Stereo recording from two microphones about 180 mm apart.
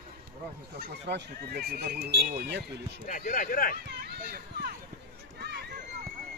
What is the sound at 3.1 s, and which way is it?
Speech, 50° left (ahead or behind).